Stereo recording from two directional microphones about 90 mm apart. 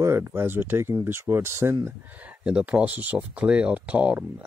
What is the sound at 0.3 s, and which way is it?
Speech, 25° right (ahead or behind).